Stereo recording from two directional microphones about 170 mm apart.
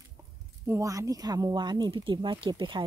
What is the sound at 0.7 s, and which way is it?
Speech, 20° right (ahead or behind).